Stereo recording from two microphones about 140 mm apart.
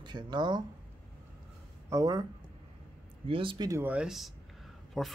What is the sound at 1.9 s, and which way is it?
Speech, 30° right (ahead or behind).